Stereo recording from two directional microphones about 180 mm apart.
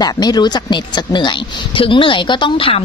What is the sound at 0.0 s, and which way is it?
Speech, 20° left (ahead or behind).